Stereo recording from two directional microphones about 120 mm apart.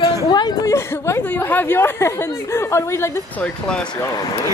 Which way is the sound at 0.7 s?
20° left (ahead or behind).